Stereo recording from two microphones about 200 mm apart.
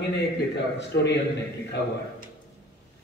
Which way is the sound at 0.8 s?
60° left (ahead or behind).